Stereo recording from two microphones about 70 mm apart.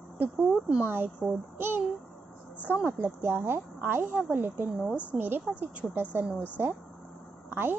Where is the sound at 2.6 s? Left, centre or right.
Right.